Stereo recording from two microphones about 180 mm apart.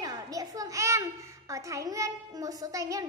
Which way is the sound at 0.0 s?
20° right (ahead or behind).